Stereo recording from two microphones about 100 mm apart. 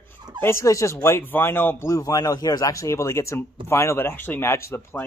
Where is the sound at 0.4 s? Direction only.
25° left (ahead or behind).